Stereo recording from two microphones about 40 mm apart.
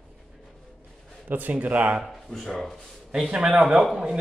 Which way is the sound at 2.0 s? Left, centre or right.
Centre.